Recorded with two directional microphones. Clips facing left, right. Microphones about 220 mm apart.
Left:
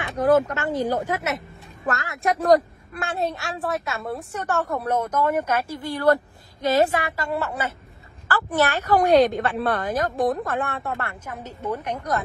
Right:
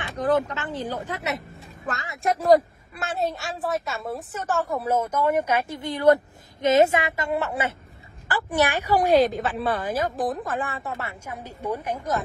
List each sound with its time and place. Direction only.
0.6 s a woman's voice: 10° left (ahead or behind)